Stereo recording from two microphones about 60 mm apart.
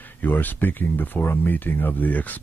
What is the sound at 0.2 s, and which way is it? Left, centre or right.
Speech, left.